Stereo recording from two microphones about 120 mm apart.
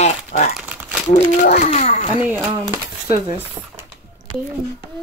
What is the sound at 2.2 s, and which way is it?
A child's voice, 15° right (ahead or behind).